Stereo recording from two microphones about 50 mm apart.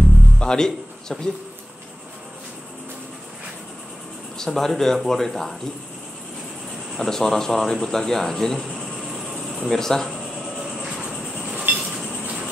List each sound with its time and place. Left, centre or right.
0.4 s a man's voice: centre
4.4 s speech: centre
7.0 s speech: centre
10.6 s vehicle: centre
11.7 s a sound: right